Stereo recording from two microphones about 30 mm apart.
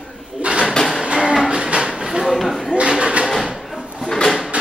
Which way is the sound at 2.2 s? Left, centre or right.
Centre.